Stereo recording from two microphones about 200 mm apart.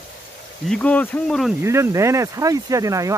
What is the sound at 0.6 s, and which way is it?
Speech, 5° left (ahead or behind).